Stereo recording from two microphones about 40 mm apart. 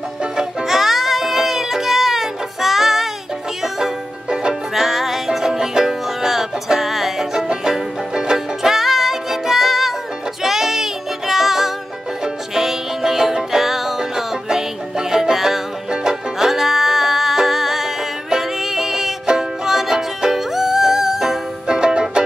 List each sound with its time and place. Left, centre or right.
0.2 s music: centre
4.3 s music: centre
4.7 s music: centre
21.6 s music: centre